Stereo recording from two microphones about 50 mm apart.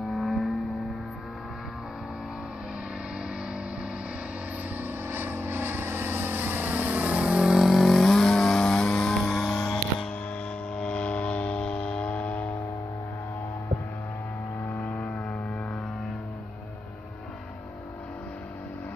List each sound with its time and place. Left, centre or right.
0.1 s vehicle: centre
4.7 s vehicle: right
7.4 s vehicle: centre
9.2 s music: centre
10.8 s mains hum: left
14.8 s vehicle: left